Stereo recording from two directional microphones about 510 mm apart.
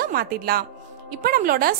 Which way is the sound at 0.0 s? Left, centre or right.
Centre.